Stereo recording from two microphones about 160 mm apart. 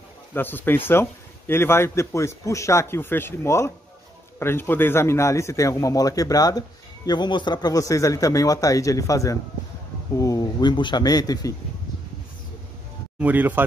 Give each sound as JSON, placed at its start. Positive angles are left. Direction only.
{"t": 0.3, "sound": "a man's voice", "side_deg": 15}
{"t": 13.2, "sound": "speech", "side_deg": -10}